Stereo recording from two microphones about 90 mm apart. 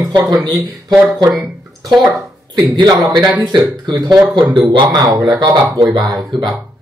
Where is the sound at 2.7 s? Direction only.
50° right (ahead or behind).